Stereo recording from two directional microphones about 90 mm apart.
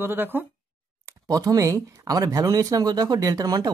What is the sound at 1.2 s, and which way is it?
Speech, 45° right (ahead or behind).